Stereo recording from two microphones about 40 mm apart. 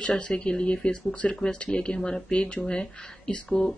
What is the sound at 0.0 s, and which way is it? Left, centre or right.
Speech, left.